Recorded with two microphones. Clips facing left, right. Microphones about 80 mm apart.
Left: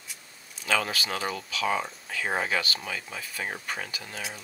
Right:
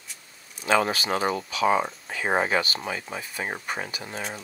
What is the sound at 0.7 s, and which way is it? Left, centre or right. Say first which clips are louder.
Speech: right 5 dB; right.